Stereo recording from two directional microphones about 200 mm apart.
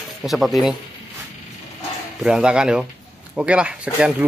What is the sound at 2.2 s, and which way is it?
Speech, 5° right (ahead or behind).